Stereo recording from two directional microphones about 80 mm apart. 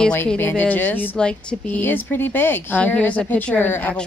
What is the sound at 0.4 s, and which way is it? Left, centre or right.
Speech, left.